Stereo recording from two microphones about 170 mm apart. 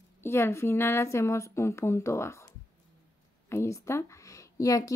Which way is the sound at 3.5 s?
15° left (ahead or behind).